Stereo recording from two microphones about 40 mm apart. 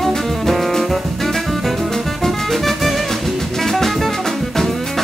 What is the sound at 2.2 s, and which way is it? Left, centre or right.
Music, centre.